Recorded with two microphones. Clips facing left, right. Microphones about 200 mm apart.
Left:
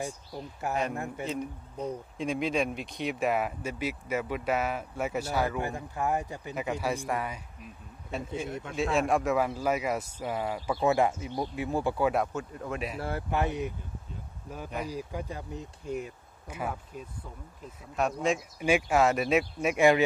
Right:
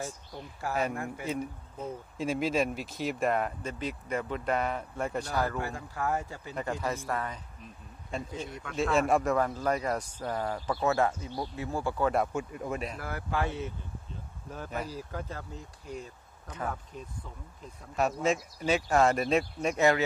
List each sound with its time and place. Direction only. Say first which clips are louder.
0.6 s speech: even; 20° left (ahead or behind)
1.2 s speech: even; 5° right (ahead or behind)
5.6 s speech: left 2 dB; 20° left (ahead or behind)
6.5 s speech: left 2 dB; 10° left (ahead or behind)
12.4 s speech: right 1 dB; 10° right (ahead or behind)
13.0 s speech: left 6 dB; 25° left (ahead or behind)
14.8 s speech: left 3 dB; 15° left (ahead or behind)
17.9 s speech: even; centre (ahead or behind)
18.6 s speech: left 2 dB; 15° left (ahead or behind)